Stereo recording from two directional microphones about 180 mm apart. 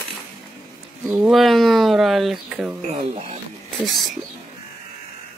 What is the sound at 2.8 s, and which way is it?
Speech, 35° right (ahead or behind).